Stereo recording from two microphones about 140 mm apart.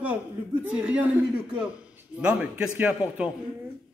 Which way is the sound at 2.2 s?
10° right (ahead or behind).